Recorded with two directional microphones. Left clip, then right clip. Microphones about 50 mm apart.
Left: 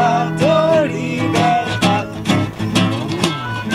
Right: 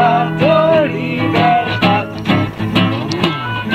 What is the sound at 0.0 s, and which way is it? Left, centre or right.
Music, centre.